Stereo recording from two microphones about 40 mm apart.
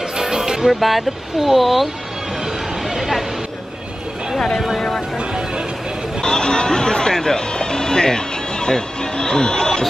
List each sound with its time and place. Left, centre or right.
0.2 s music: centre
0.7 s speech: centre
2.4 s a sound: centre
4.6 s speech: centre
5.1 s vehicle: centre
6.2 s music: centre